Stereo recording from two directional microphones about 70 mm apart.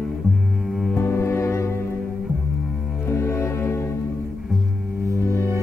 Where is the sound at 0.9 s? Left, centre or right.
Left.